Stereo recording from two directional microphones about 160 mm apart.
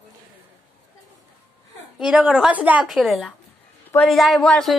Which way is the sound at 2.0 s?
5° right (ahead or behind).